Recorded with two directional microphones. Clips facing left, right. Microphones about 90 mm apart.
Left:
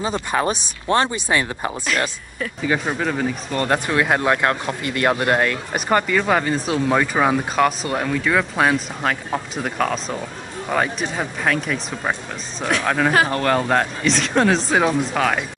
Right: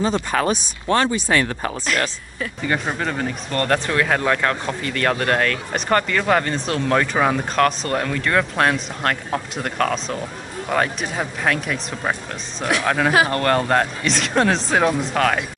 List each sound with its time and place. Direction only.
0.0 s speech: 5° left (ahead or behind)
0.4 s speech: 20° left (ahead or behind)
1.9 s speech: centre (ahead or behind)